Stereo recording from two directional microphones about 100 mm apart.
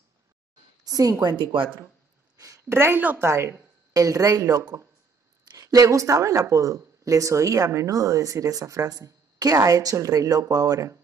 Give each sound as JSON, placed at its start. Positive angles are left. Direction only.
{"t": 0.8, "sound": "a woman's voice", "side_deg": -40}
{"t": 1.4, "sound": "speech", "side_deg": -60}
{"t": 2.4, "sound": "a sound", "side_deg": -35}
{"t": 2.8, "sound": "a woman's voice", "side_deg": -20}